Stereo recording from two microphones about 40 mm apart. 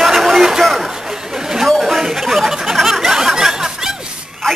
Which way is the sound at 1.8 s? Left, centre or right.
Centre.